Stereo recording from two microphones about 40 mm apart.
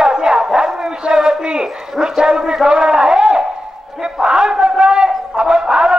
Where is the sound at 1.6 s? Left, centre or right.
Centre.